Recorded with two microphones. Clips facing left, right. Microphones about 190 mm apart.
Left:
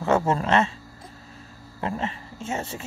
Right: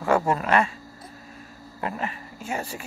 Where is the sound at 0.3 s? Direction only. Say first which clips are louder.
Even; 25° left (ahead or behind).